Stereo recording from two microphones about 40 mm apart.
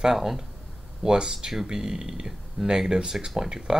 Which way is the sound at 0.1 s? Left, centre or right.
Centre.